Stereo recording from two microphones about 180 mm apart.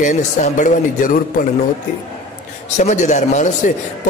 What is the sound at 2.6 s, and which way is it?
Speech, 40° left (ahead or behind).